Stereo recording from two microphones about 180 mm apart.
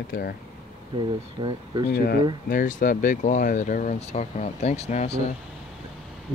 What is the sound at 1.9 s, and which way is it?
Speech, 55° left (ahead or behind).